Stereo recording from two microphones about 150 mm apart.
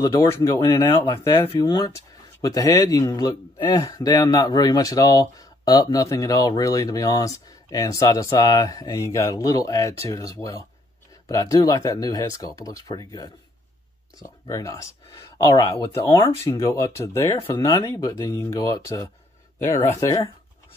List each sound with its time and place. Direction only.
0.7 s speech: 30° left (ahead or behind)
14.5 s speech: 25° left (ahead or behind)